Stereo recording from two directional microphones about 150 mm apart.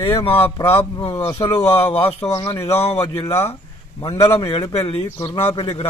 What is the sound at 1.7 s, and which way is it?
Speech, 40° left (ahead or behind).